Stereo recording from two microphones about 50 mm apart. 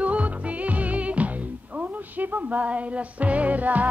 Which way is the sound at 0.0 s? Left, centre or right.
Right.